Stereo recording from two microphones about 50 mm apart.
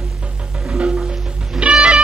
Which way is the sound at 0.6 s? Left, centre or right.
Centre.